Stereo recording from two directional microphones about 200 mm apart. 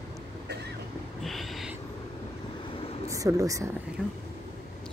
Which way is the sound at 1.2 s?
Centre (ahead or behind).